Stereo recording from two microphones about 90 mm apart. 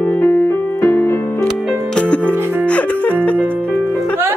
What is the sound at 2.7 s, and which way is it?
Music, 15° left (ahead or behind).